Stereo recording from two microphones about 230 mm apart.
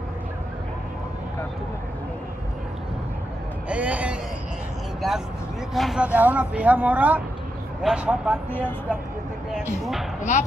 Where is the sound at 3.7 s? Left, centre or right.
Centre.